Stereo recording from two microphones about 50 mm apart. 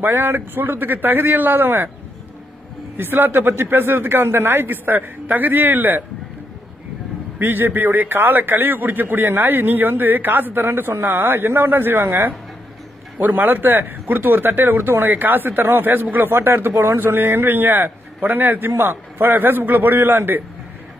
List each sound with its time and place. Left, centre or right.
0.0 s a man's voice: right
3.0 s a man's voice: right
7.3 s a man's voice: right